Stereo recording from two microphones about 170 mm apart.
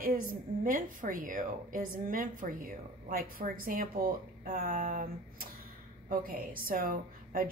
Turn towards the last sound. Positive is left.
turn(degrees=-55)  # may be behind; listen again after turning